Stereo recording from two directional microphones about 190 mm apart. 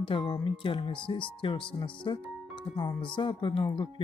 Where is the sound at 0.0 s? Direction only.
25° left (ahead or behind).